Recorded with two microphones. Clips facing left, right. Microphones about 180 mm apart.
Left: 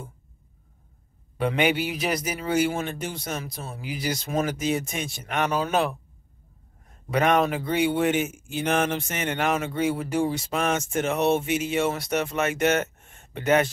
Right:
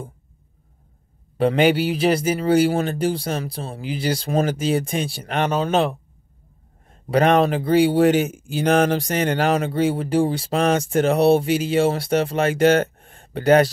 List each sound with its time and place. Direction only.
1.4 s a man's voice: 35° right (ahead or behind)